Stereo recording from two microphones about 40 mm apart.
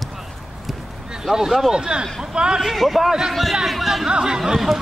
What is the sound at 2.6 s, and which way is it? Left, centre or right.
Speech, centre.